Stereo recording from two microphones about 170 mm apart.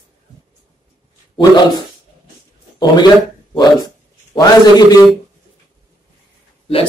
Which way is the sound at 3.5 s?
25° left (ahead or behind).